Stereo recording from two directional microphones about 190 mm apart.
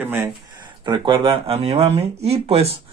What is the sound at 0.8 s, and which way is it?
Speech, 25° right (ahead or behind).